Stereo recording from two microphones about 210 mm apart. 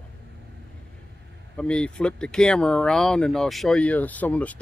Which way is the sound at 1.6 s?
5° left (ahead or behind).